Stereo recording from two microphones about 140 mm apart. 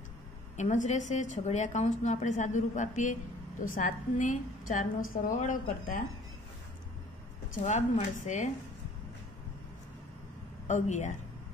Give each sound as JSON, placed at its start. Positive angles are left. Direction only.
{"t": 0.6, "sound": "a woman's voice", "side_deg": 55}
{"t": 7.5, "sound": "a woman's voice", "side_deg": 55}
{"t": 10.7, "sound": "a woman's voice", "side_deg": 60}